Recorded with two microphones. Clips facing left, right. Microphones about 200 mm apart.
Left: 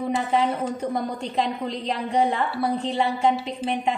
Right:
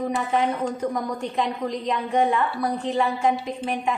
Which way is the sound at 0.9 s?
30° left (ahead or behind).